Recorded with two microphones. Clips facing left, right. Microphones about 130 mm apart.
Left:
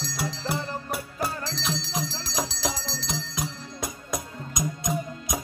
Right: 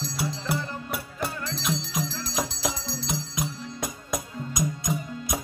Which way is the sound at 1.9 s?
35° left (ahead or behind).